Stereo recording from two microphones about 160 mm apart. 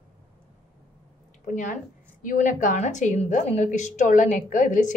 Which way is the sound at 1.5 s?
55° left (ahead or behind).